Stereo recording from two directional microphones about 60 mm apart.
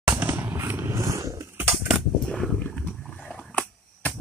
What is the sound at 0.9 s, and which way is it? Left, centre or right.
Vehicle, right.